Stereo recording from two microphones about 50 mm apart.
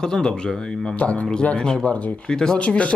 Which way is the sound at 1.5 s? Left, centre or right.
Centre.